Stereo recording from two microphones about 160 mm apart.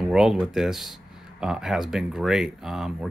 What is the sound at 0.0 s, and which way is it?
Speech, 5° right (ahead or behind).